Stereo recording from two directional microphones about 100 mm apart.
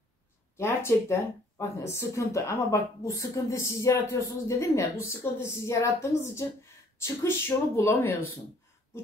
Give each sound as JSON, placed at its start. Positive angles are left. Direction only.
{"t": 0.6, "sound": "speech", "side_deg": 25}